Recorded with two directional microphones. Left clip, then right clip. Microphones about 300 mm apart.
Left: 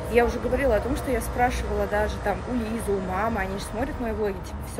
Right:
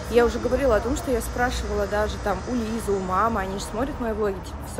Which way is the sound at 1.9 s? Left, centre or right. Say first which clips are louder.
Right 1 dB; centre.